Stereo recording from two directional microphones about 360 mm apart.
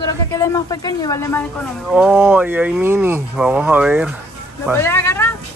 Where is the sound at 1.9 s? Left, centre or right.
Centre.